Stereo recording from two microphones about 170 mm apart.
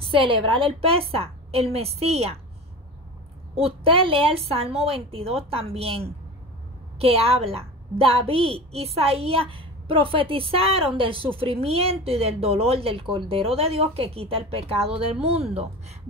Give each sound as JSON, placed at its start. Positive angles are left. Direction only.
{"t": 0.0, "sound": "speech", "side_deg": -30}
{"t": 3.5, "sound": "speech", "side_deg": -35}